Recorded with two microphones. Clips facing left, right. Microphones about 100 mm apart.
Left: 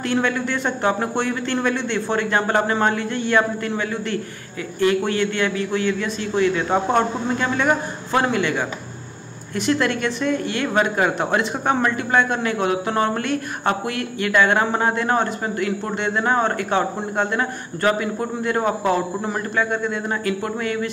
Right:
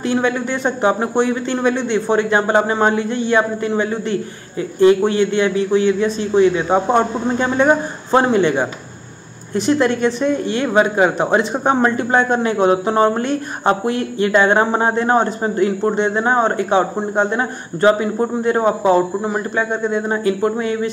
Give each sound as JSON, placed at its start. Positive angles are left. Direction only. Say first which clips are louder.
{"t": 0.0, "sound": "speech", "louder": "right 3 dB", "side_deg": -20}